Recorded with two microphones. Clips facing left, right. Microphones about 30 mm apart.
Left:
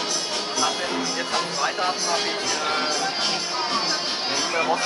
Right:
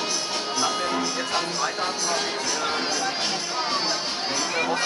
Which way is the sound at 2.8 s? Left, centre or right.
Left.